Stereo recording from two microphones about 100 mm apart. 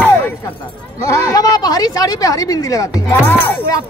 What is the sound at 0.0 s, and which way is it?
Music, 20° left (ahead or behind).